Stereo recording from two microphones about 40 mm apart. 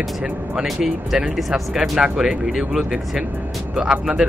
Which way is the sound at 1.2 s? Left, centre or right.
Right.